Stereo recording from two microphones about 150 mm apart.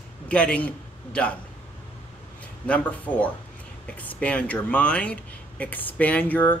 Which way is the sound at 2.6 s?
10° left (ahead or behind).